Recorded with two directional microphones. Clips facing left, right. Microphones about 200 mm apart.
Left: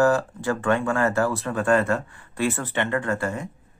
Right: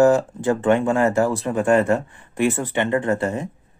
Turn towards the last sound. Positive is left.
turn(degrees=-25)  # may be behind; listen again after turning